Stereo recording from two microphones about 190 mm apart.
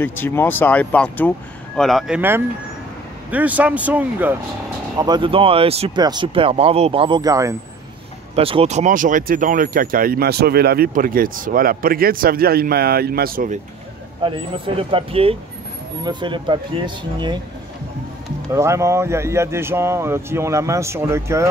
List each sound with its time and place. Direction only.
0.0 s speech: 10° left (ahead or behind); by 4.4 s 10° right (ahead or behind)
4.9 s speech: 20° right (ahead or behind)
8.4 s speech: 30° right (ahead or behind); by 13.6 s 50° right (ahead or behind)
14.2 s speech: 30° right (ahead or behind)
18.5 s speech: 15° right (ahead or behind)